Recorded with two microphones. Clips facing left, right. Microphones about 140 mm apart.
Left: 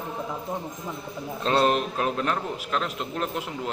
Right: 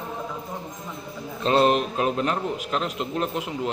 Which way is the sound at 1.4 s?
5° right (ahead or behind).